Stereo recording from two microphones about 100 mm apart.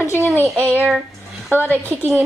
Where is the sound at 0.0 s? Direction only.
25° left (ahead or behind).